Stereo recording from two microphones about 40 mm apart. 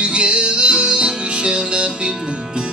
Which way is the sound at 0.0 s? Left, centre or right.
Right.